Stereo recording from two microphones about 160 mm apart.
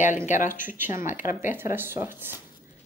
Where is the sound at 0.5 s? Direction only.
10° right (ahead or behind).